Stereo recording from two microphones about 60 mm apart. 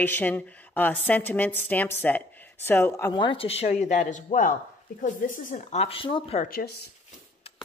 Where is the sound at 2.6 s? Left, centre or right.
Left.